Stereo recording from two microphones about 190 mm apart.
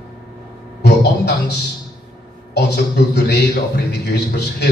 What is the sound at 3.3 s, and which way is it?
A man's voice, 60° left (ahead or behind).